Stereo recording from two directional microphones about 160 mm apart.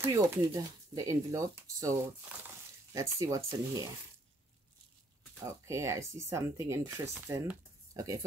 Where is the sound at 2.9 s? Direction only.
20° right (ahead or behind).